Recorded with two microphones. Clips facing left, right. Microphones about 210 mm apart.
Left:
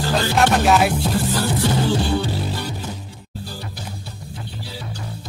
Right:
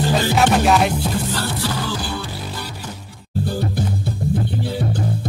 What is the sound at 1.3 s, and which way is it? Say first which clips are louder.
Music: left 3 dB; 15° left (ahead or behind).